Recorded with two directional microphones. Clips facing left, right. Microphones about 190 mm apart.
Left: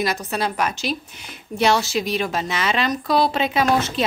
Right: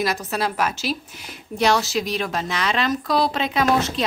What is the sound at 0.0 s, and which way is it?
A woman's voice, centre (ahead or behind).